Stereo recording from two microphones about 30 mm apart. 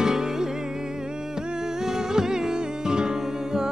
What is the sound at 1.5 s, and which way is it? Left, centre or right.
Music, centre.